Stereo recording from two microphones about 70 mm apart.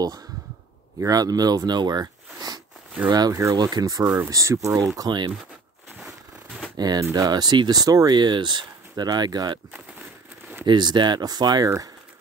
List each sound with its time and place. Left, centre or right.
0.9 s speech: right
3.7 s speech: right
4.9 s speech: right
7.0 s speech: right
7.2 s speech: right
10.6 s speech: right